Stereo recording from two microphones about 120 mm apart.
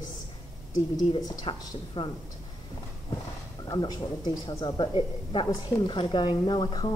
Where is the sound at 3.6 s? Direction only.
35° left (ahead or behind).